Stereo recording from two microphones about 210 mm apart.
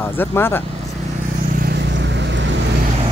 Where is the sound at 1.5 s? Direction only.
45° right (ahead or behind).